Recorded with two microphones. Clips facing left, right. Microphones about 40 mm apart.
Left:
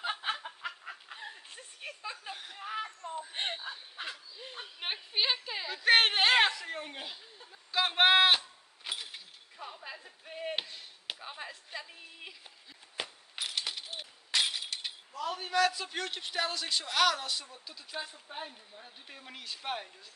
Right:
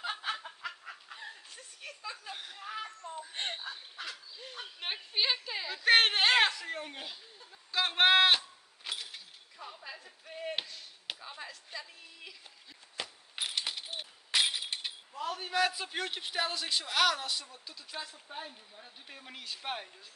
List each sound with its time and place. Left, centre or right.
0.2 s fowl: centre
0.5 s chicken: centre
1.5 s a sound: left; by 8.4 s centre
9.0 s chink: centre
11.1 s a sound: centre
13.6 s a sound: centre
15.6 s speech: centre
18.0 s speech: centre
18.4 s speech: centre